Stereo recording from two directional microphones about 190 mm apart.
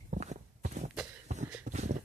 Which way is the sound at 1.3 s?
35° right (ahead or behind).